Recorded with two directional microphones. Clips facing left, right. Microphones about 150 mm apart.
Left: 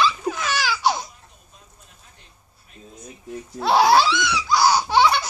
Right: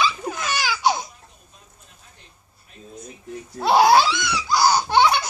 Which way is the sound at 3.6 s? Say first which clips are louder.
Right 1 dB; centre (ahead or behind).